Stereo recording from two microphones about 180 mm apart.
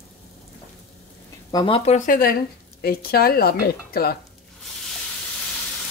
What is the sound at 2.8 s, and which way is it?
A woman's voice, 60° left (ahead or behind).